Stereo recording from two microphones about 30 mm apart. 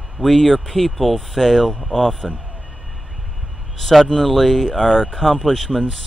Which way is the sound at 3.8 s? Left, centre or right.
Centre.